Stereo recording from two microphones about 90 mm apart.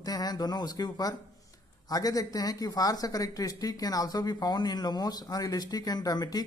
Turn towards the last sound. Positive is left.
turn(degrees=45)  # may be behind; listen again after turning